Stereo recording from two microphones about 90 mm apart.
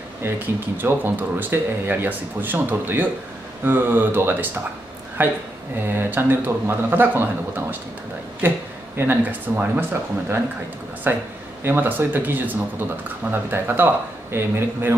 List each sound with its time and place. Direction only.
0.7 s speech: 25° right (ahead or behind)
11.1 s speech: 25° right (ahead or behind)